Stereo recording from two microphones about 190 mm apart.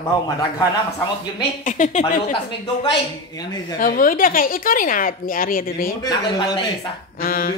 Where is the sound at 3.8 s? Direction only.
45° left (ahead or behind).